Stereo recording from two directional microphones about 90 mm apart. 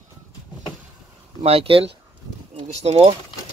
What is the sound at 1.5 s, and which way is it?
Speech, 90° right.